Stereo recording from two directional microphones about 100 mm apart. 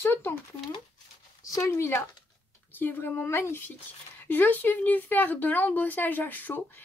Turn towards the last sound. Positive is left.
turn(degrees=20)  # may be behind; listen again after turning